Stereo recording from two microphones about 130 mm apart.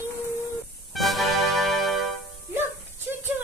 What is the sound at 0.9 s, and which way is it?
Music, centre (ahead or behind).